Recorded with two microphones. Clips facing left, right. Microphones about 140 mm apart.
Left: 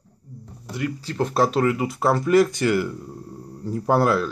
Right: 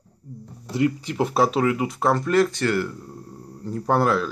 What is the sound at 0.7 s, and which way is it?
Speech, 20° right (ahead or behind).